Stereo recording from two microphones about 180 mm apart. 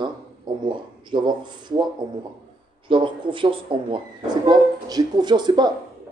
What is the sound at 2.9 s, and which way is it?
Speech, 30° right (ahead or behind).